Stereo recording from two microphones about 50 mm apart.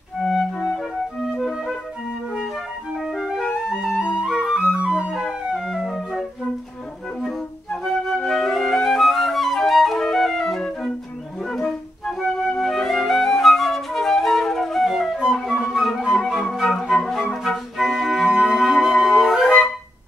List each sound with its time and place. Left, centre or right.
0.2 s music: centre
1.3 s flute: centre
3.0 s music: centre
3.6 s music: centre
4.7 s flute: right
5.7 s music: centre
7.8 s flute: centre
17.4 s music: centre
19.4 s flute: centre